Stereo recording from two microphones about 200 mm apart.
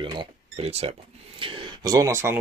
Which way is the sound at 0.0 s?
25° right (ahead or behind).